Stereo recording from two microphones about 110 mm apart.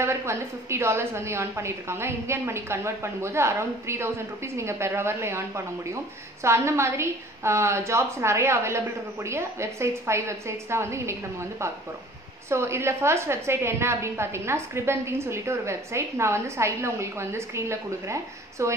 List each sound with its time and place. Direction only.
0.0 s a woman's voice: 25° right (ahead or behind)